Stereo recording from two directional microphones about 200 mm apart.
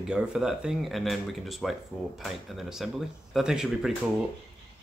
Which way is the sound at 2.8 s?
Centre (ahead or behind).